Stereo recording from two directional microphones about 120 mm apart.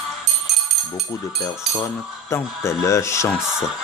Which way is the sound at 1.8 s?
25° left (ahead or behind).